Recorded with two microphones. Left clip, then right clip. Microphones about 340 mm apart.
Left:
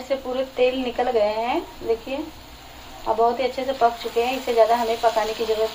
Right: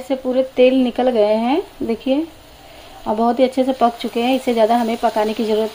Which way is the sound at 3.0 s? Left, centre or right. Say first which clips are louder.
Right 4 dB; right.